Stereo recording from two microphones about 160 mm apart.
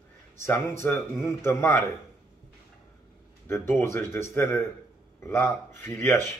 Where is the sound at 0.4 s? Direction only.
15° left (ahead or behind).